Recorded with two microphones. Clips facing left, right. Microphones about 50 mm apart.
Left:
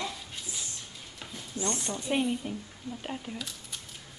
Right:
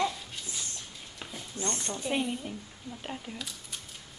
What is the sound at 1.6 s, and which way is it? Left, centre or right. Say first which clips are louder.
Speech: left 2 dB; left.